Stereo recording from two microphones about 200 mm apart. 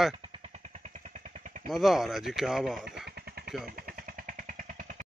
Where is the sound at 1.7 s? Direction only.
Centre (ahead or behind).